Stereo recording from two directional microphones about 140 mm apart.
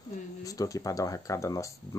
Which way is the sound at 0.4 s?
25° left (ahead or behind).